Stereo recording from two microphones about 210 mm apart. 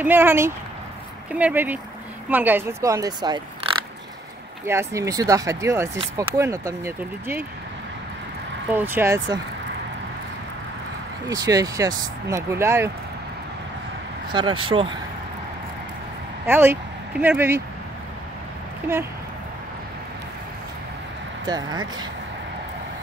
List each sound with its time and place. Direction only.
0.0 s speech: 10° right (ahead or behind)
4.6 s speech: 15° right (ahead or behind)
8.7 s speech: 10° right (ahead or behind)
11.2 s speech: 15° right (ahead or behind)
14.3 s speech: 25° right (ahead or behind)
16.4 s speech: 10° right (ahead or behind)
21.5 s speech: 20° right (ahead or behind)